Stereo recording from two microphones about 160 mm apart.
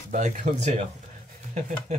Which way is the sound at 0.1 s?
50° right (ahead or behind).